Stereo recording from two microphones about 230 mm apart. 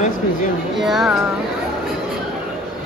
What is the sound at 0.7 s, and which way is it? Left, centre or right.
Speech, centre.